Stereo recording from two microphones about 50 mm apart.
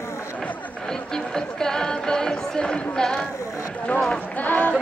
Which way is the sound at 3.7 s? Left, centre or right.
Left.